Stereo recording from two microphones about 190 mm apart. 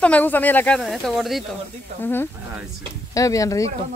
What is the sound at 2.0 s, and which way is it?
Speech, 10° left (ahead or behind).